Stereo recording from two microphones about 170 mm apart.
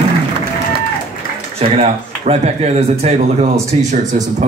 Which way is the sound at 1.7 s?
35° right (ahead or behind).